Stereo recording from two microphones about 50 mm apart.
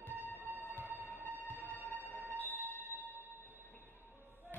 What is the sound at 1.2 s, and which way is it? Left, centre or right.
Music, left.